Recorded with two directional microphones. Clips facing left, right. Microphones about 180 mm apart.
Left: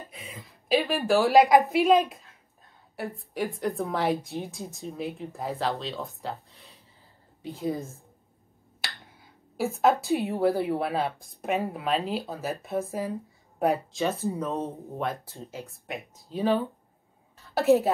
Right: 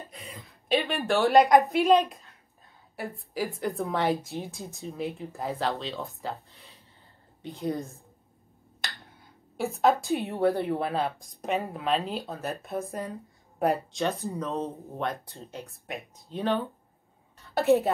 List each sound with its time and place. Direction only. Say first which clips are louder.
0.1 s a woman's voice: even; centre (ahead or behind)
9.0 s a woman's voice: even; centre (ahead or behind)